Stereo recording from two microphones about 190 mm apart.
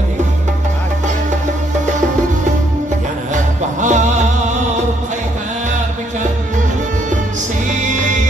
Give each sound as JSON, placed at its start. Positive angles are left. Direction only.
{"t": 3.8, "sound": "music", "side_deg": -40}
{"t": 7.7, "sound": "music", "side_deg": -40}